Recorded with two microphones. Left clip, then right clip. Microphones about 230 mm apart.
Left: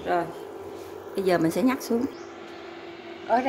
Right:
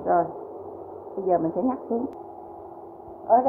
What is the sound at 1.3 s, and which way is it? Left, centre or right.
Speech, left.